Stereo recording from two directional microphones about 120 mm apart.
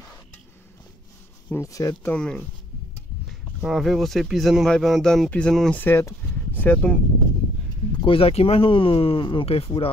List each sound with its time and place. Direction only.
1.5 s speech: 25° left (ahead or behind)
2.1 s speech: 5° left (ahead or behind)
5.8 s speech: 20° left (ahead or behind)
8.0 s speech: 50° left (ahead or behind)